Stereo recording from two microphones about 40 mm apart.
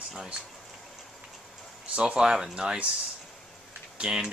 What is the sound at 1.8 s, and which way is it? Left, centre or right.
Speech, right.